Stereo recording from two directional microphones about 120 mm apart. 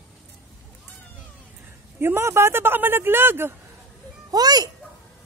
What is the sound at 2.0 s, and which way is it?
Speech, 20° right (ahead or behind).